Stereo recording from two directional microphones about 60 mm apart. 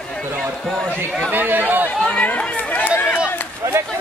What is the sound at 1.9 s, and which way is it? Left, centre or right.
Speech, left.